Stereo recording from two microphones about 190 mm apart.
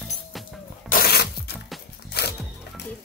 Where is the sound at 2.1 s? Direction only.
60° left (ahead or behind).